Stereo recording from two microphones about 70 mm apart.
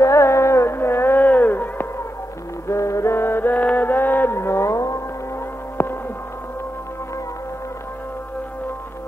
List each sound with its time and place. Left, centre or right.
0.0 s music: left
2.7 s music: left
5.8 s a sound: left